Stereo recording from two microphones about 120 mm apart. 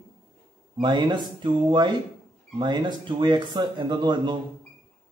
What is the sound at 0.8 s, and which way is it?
A man's voice, 40° right (ahead or behind).